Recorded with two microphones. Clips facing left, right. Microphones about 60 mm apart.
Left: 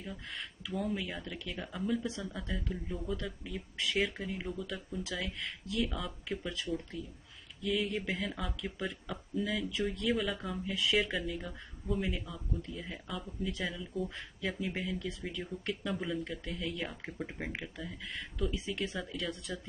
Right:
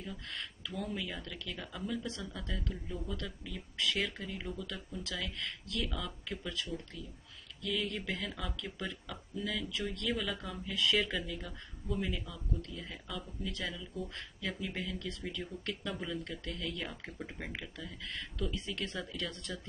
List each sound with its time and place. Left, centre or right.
0.0 s speech: centre
4.4 s speech: centre
7.6 s speech: centre